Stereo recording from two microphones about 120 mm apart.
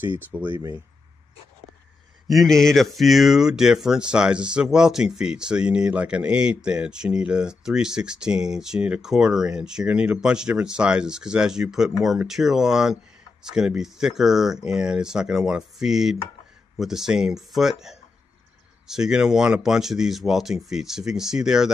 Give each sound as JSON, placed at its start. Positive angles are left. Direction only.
{"t": 0.0, "sound": "speech", "side_deg": -15}
{"t": 2.2, "sound": "speech", "side_deg": 0}